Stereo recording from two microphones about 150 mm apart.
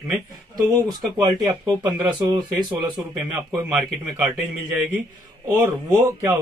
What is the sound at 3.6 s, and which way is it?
Speech, 10° right (ahead or behind).